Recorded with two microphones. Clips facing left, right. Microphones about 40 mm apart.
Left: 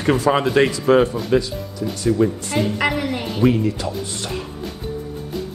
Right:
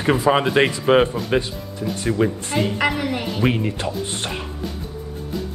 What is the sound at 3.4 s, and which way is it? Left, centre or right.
Speech, right.